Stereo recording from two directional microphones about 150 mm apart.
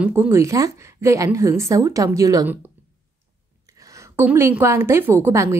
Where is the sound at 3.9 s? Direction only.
15° right (ahead or behind).